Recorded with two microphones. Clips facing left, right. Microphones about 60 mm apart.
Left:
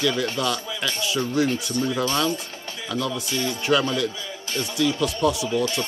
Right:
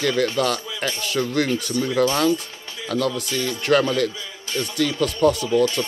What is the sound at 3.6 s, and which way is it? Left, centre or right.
Speech, right.